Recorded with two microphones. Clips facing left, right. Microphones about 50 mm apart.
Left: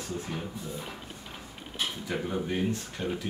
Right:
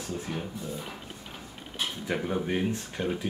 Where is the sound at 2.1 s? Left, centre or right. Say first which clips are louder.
Right 3 dB; centre.